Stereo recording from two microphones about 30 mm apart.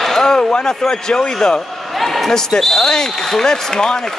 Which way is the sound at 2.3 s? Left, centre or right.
Centre.